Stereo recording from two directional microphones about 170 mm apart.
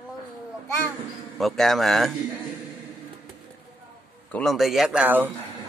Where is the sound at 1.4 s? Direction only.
Centre (ahead or behind).